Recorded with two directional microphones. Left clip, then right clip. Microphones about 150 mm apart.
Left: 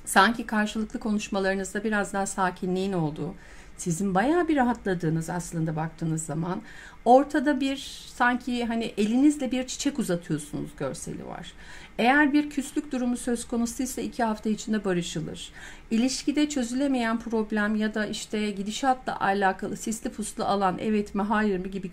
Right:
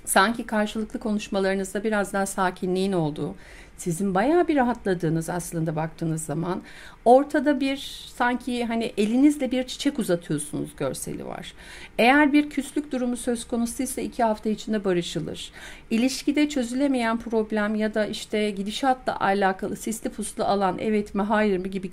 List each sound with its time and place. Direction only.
0.1 s speech: 30° right (ahead or behind)
3.8 s speech: 25° right (ahead or behind)
7.1 s speech: 30° right (ahead or behind)